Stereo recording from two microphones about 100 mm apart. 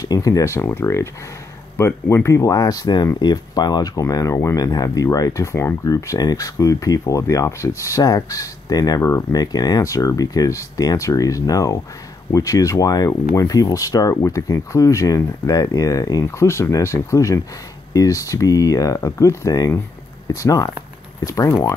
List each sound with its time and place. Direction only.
0.0 s speech: 35° left (ahead or behind)